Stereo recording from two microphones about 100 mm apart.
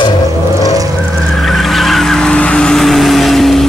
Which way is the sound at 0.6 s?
35° right (ahead or behind).